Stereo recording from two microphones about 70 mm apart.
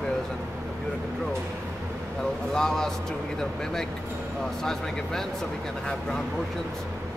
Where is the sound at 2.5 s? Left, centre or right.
Centre.